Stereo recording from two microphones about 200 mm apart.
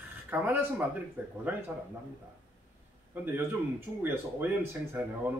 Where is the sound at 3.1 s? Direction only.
10° right (ahead or behind).